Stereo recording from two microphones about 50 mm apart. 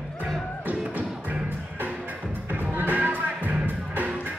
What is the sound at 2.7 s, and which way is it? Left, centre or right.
Music, right.